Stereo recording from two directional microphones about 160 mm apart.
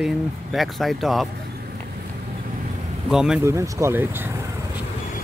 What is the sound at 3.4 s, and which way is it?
Speech, 20° right (ahead or behind).